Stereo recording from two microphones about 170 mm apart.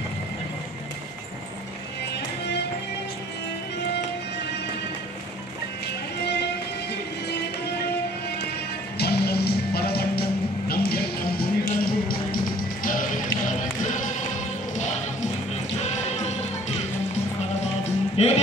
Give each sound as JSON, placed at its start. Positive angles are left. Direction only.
{"t": 6.2, "sound": "music", "side_deg": 80}
{"t": 8.9, "sound": "music", "side_deg": 70}
{"t": 15.8, "sound": "music", "side_deg": 40}
{"t": 18.2, "sound": "music", "side_deg": 40}